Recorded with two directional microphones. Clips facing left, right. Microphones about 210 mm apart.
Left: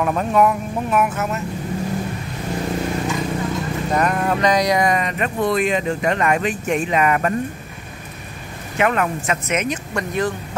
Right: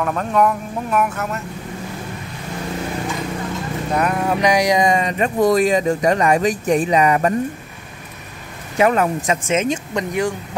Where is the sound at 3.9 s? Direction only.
5° right (ahead or behind); by 7.3 s 25° right (ahead or behind).